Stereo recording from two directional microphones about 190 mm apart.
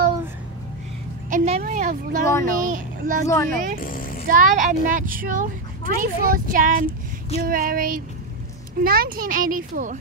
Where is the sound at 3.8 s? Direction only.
45° left (ahead or behind).